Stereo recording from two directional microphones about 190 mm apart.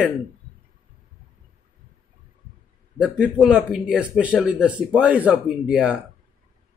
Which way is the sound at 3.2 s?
Centre (ahead or behind).